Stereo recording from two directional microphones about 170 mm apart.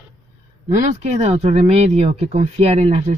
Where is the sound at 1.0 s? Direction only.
40° right (ahead or behind).